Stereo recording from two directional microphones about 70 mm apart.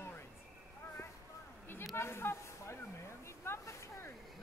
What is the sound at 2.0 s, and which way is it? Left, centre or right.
Speech, left.